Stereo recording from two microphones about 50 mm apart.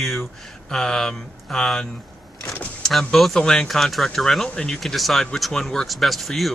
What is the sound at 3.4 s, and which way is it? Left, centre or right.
Speech, centre.